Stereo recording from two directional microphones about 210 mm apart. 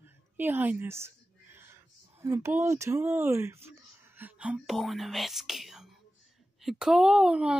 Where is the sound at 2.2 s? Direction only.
15° right (ahead or behind).